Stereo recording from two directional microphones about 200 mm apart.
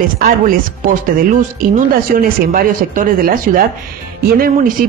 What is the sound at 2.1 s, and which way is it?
Speech, 45° right (ahead or behind).